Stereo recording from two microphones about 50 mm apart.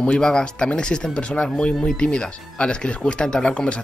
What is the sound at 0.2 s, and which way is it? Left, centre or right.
Speech, centre.